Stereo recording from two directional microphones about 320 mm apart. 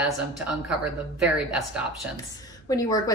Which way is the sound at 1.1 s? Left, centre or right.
Centre.